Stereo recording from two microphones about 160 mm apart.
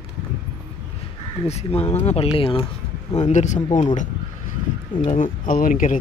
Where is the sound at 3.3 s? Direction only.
50° left (ahead or behind).